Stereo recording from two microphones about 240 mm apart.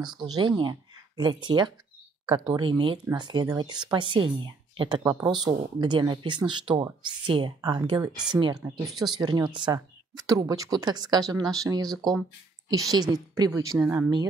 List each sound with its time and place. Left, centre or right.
0.0 s speech: centre
8.8 s speech: centre
9.2 s speech: centre